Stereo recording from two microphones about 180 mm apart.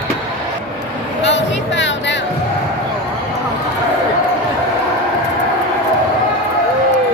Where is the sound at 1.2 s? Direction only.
85° left.